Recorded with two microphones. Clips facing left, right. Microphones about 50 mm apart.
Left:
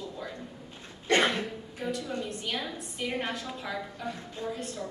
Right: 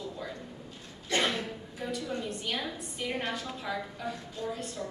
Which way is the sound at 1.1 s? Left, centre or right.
Left.